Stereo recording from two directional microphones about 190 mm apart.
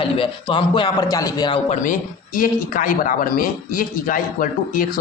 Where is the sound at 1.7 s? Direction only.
45° left (ahead or behind).